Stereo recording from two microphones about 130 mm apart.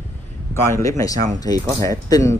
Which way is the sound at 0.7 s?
25° left (ahead or behind).